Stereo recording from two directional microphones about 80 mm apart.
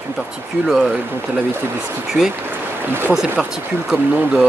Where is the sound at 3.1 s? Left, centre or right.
Centre.